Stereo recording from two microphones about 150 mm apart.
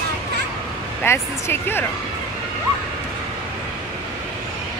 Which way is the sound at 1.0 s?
15° left (ahead or behind).